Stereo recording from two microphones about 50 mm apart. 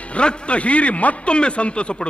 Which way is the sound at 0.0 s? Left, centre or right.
Left.